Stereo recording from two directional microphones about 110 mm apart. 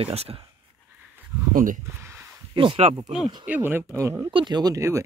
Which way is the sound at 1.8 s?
25° right (ahead or behind).